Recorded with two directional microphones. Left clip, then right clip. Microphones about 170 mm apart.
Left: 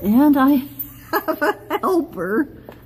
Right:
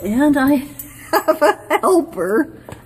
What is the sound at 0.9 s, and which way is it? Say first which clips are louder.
Speech: right 7 dB; 5° left (ahead or behind).